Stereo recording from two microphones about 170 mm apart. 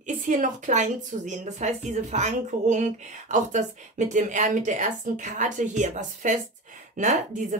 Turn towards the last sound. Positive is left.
turn(degrees=-45)  # may be behind; listen again after turning